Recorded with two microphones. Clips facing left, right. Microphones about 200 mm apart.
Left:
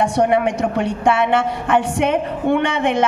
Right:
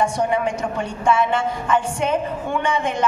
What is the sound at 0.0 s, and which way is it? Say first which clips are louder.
A woman's voice: left 4 dB; 65° left (ahead or behind).